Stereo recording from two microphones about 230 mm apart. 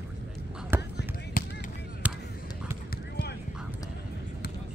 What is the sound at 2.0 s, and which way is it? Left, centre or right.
Basketball bounce, centre.